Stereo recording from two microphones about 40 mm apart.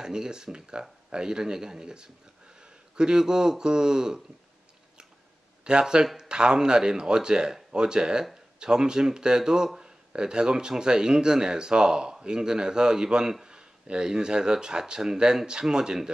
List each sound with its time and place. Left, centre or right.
0.0 s speech: centre
5.6 s speech: right